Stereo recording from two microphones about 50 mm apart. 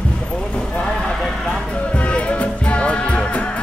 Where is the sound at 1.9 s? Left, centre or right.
Left.